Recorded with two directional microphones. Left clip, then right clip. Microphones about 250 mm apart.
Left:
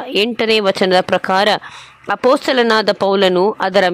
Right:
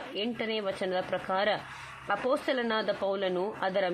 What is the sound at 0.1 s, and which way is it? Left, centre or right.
A woman's voice, left.